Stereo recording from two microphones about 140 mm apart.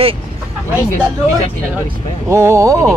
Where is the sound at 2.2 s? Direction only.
20° right (ahead or behind).